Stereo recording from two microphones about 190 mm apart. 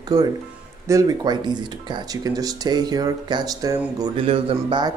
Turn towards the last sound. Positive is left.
turn(degrees=-25)  # may be behind; listen again after turning